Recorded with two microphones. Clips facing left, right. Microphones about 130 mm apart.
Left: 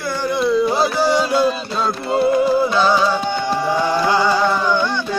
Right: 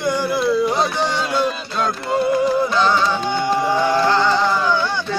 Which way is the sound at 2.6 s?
10° left (ahead or behind).